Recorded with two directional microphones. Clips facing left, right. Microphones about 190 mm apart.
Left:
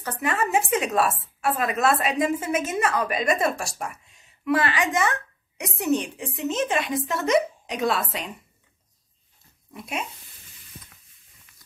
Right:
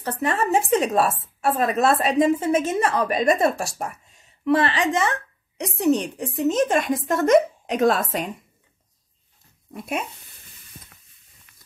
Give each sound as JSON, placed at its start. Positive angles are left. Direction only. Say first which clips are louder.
{"t": 0.0, "sound": "a woman's voice", "louder": "right 3 dB", "side_deg": -30}